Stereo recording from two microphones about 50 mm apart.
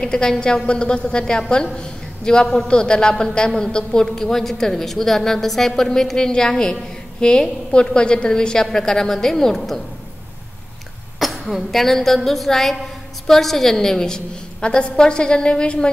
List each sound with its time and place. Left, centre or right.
0.0 s a woman's voice: centre
11.1 s a woman's voice: centre